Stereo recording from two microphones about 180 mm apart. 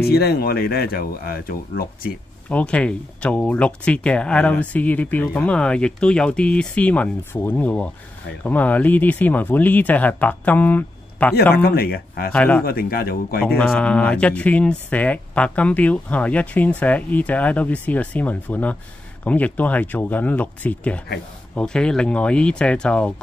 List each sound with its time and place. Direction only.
0.0 s speech: 60° left (ahead or behind)
2.5 s speech: 5° left (ahead or behind)
11.5 s speech: 60° left (ahead or behind)
12.3 s speech: 10° left (ahead or behind)
12.6 s speech: 55° left (ahead or behind)
13.6 s speech: 5° left (ahead or behind)